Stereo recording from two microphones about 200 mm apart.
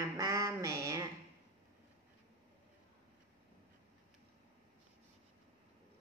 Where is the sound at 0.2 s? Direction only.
15° right (ahead or behind).